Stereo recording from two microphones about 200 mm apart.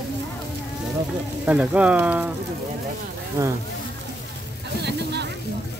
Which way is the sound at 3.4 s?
15° right (ahead or behind).